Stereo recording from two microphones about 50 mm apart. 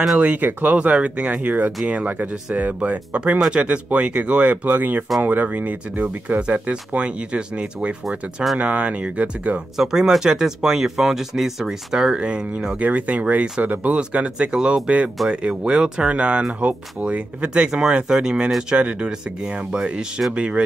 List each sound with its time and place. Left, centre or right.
0.2 s speech: right
0.5 s speech: right
0.7 s speech: right
9.8 s speech: centre
12.7 s speech: right